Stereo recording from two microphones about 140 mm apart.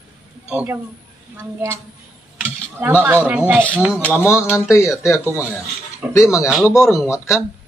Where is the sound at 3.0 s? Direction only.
10° right (ahead or behind).